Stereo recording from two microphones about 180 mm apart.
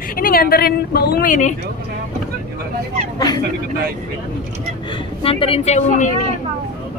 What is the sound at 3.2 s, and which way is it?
Speech, 20° left (ahead or behind).